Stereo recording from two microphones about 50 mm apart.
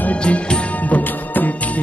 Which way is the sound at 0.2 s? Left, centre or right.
Left.